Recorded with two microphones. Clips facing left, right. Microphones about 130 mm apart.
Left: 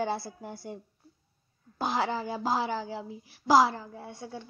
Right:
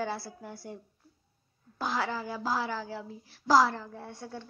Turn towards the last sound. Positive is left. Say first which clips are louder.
# left 1 dB
turn(degrees=10)  # may be behind; listen again after turning